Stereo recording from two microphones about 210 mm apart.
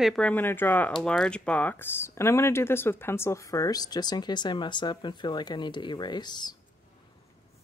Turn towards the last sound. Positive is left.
turn(degrees=20)  # may be behind; listen again after turning